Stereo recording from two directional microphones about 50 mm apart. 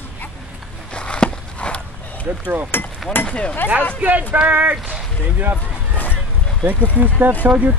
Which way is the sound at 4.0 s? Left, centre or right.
Right.